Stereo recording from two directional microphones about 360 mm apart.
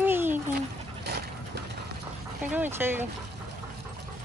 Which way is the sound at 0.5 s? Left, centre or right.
Right.